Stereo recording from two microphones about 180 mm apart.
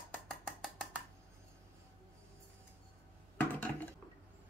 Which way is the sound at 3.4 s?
10° left (ahead or behind).